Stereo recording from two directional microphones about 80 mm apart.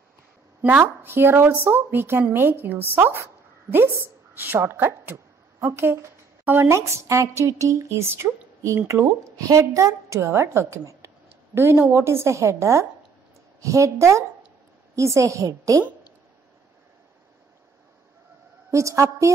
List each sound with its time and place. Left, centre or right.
0.6 s a woman's voice: right
6.7 s a woman's voice: right
18.7 s a woman's voice: right